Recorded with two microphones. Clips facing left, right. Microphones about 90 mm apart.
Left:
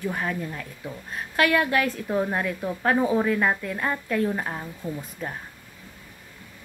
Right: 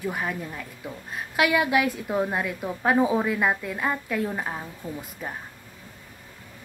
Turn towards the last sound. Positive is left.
turn(degrees=-10)  # may be behind; listen again after turning